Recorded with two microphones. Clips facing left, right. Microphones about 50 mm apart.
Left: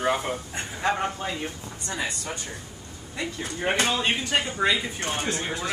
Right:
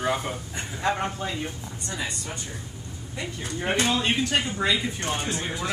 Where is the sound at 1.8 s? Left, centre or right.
Left.